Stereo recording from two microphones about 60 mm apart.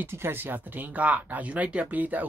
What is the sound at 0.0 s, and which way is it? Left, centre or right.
Speech, right.